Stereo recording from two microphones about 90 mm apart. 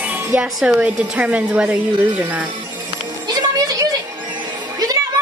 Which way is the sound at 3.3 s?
45° right (ahead or behind).